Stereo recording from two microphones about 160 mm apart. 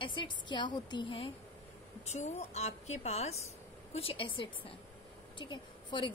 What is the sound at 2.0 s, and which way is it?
A woman's voice, 45° left (ahead or behind).